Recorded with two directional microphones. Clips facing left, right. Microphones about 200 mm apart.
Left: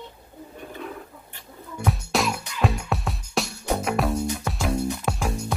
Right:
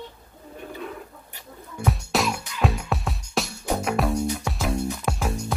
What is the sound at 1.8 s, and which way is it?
Music, centre (ahead or behind).